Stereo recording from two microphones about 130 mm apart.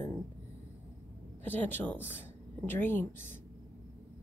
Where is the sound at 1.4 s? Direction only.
15° left (ahead or behind).